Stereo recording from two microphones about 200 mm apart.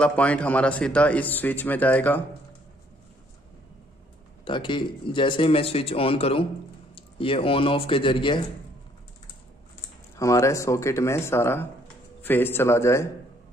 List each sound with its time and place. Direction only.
0.0 s a man's voice: 5° left (ahead or behind)
4.5 s a man's voice: 25° left (ahead or behind)
10.1 s a man's voice: 15° left (ahead or behind)